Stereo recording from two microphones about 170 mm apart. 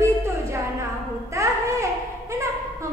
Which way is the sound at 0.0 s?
15° right (ahead or behind).